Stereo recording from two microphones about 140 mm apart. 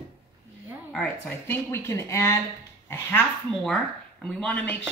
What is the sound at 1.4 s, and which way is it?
Speech, 20° left (ahead or behind).